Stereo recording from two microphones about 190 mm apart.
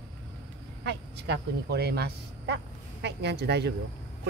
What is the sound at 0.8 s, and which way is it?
Speech, 65° right (ahead or behind).